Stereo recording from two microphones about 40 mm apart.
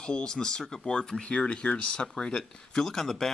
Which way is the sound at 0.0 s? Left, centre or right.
Left.